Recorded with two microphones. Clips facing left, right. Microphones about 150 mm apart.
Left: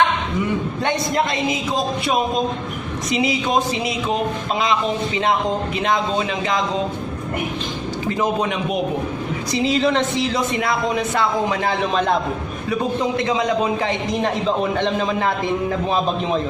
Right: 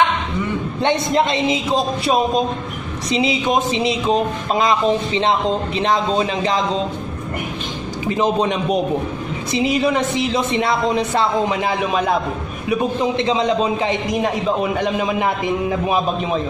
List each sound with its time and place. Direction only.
0.8 s a woman's voice: 25° right (ahead or behind)
3.1 s a woman's voice: 25° right (ahead or behind)
4.6 s a man's voice: 40° right (ahead or behind)
8.1 s a woman's voice: 25° right (ahead or behind)
11.4 s a woman's voice: 20° right (ahead or behind)
11.8 s a man's voice: 10° right (ahead or behind)
12.6 s a woman's voice: 20° right (ahead or behind)
14.2 s a man's voice: 10° right (ahead or behind)